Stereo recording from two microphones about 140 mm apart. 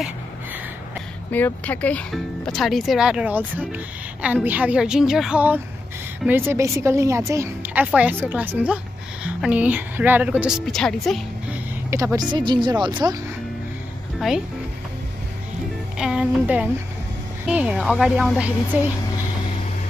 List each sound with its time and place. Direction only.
1.3 s speech: 10° left (ahead or behind)
2.1 s a woman's voice: centre (ahead or behind)
10.6 s speech: 5° left (ahead or behind)
11.9 s speech: 20° right (ahead or behind)
16.0 s a woman's voice: 5° right (ahead or behind)